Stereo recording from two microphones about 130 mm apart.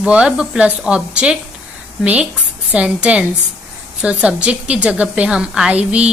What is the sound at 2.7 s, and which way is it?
A woman's voice, 10° right (ahead or behind).